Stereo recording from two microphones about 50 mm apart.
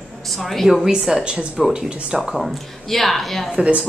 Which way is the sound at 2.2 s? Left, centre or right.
Centre.